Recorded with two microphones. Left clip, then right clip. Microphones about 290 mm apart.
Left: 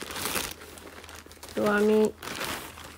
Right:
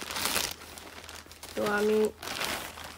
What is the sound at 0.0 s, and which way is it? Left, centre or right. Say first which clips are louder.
Crumpling: right 1 dB; centre.